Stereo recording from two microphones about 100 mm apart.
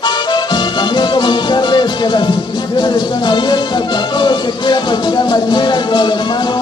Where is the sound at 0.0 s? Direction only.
50° left (ahead or behind).